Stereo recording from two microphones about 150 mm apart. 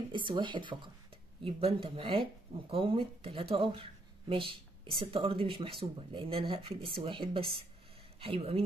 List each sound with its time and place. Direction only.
0.1 s speech: 30° right (ahead or behind)